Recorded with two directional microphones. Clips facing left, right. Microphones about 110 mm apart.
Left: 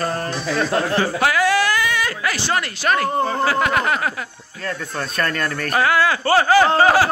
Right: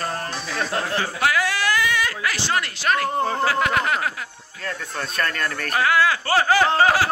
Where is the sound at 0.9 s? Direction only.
45° left (ahead or behind).